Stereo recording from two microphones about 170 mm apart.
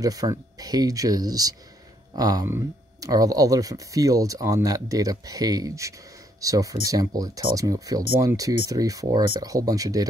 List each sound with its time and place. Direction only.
0.0 s speech: 20° right (ahead or behind)